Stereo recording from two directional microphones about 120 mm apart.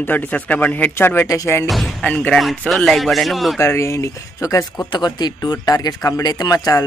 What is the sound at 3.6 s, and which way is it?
Speech, 25° left (ahead or behind).